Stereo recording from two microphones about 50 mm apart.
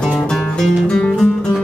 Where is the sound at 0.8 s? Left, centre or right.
Left.